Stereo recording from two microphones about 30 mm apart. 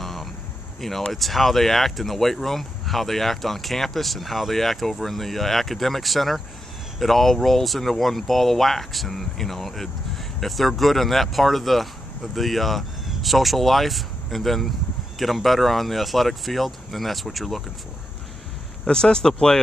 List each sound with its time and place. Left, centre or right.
0.0 s a sound: centre
0.7 s speech: centre
18.9 s speech: left